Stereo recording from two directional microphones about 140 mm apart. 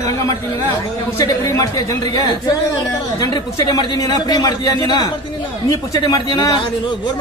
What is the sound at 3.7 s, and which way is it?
A man's voice, 30° left (ahead or behind).